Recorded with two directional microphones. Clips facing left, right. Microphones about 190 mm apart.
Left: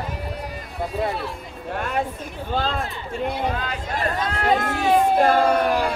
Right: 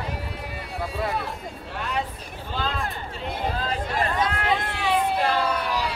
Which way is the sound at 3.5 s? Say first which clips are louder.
Even; 30° right (ahead or behind).